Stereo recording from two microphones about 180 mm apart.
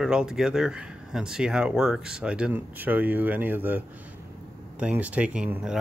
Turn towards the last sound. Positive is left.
turn(degrees=-5)  # may be behind; listen again after turning